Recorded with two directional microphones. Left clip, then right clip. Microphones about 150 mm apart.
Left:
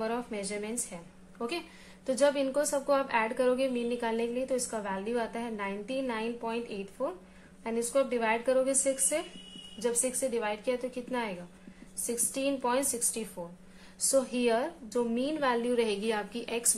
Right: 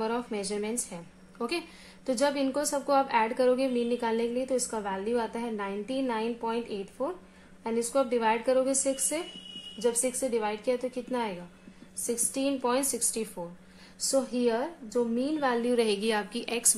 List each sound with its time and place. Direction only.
0.0 s a woman's voice: 40° right (ahead or behind)
2.0 s a woman's voice: 40° right (ahead or behind)
14.1 s a woman's voice: 20° right (ahead or behind)
14.5 s a woman's voice: centre (ahead or behind)
15.0 s a woman's voice: 25° right (ahead or behind)